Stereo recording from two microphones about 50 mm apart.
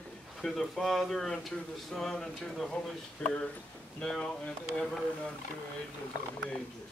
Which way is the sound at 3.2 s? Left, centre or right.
Centre.